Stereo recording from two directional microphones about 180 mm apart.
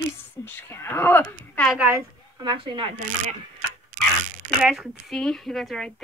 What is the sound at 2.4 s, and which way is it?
Speech, 25° right (ahead or behind).